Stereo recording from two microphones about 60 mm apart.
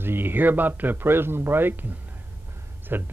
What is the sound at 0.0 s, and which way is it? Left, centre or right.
Speech, right.